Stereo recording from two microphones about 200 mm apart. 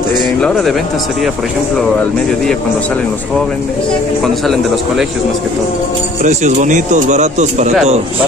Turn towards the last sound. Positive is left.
turn(degrees=-35)  # may be behind; listen again after turning